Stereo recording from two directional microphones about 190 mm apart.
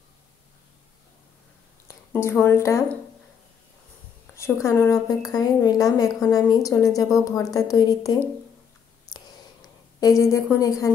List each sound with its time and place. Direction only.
1.9 s speech: 15° left (ahead or behind)
4.4 s a woman's voice: 15° left (ahead or behind)
9.1 s whispering: 20° left (ahead or behind)
9.9 s a woman's voice: 15° left (ahead or behind)